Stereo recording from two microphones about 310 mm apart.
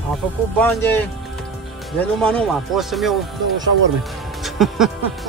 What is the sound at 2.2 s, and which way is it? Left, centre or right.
Speech, centre.